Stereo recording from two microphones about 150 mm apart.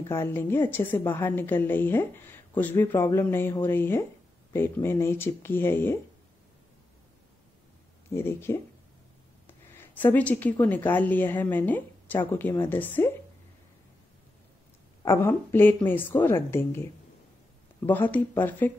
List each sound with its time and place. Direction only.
0.1 s a woman's voice: 15° left (ahead or behind)
8.1 s a woman's voice: 15° left (ahead or behind)
15.0 s a woman's voice: 15° left (ahead or behind)